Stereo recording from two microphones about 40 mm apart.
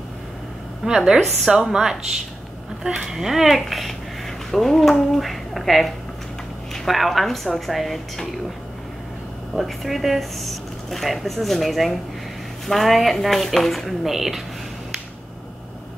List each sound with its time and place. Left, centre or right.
0.8 s a woman's voice: centre
9.6 s speech: centre
14.0 s speech: centre